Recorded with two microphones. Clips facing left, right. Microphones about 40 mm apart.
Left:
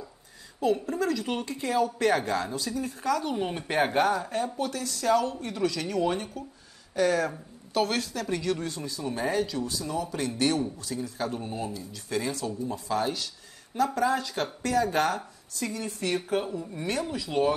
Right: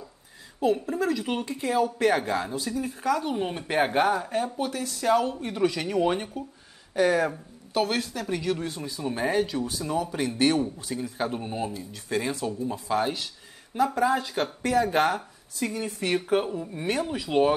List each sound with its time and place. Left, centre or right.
0.6 s a woman's voice: centre; by 17.6 s right